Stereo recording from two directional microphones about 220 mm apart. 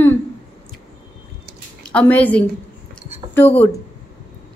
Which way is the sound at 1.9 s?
5° left (ahead or behind).